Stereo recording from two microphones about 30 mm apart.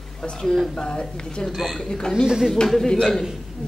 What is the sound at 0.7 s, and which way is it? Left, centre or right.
Speech, left.